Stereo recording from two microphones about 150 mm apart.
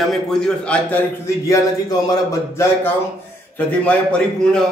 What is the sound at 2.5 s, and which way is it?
A man's voice, 15° left (ahead or behind).